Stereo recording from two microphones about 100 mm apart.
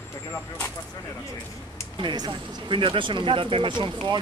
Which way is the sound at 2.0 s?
50° right (ahead or behind).